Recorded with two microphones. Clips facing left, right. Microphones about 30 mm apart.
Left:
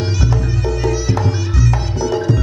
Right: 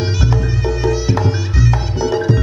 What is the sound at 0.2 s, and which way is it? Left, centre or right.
Music, centre.